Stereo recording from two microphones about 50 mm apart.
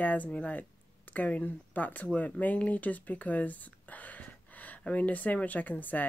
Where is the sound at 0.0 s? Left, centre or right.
Left.